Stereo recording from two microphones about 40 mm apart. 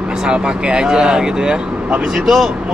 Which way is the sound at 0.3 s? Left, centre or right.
Right.